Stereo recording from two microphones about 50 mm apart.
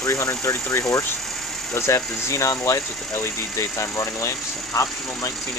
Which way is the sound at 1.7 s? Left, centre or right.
Left.